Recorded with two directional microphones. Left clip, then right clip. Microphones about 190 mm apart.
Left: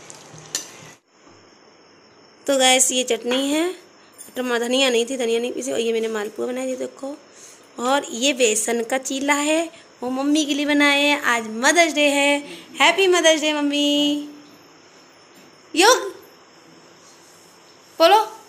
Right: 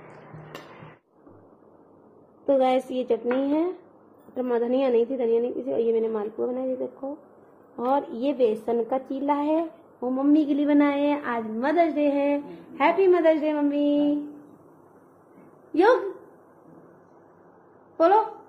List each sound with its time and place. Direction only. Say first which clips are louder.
2.4 s a woman's voice: left 5 dB; 5° left (ahead or behind)
7.7 s a woman's voice: left 4 dB; 30° left (ahead or behind)
8.2 s a woman's voice: left 4 dB; 5° left (ahead or behind)
10.1 s a woman's voice: left 1 dB; centre (ahead or behind)
15.7 s speech: left 4 dB; centre (ahead or behind)